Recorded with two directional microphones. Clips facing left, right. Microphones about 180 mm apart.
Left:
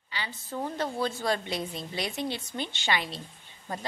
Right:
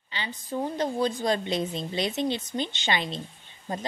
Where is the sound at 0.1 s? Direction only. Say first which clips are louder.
Right 4 dB; 20° right (ahead or behind).